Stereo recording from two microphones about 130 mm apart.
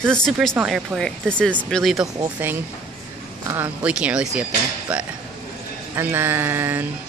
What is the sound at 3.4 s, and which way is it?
Speech, 20° right (ahead or behind).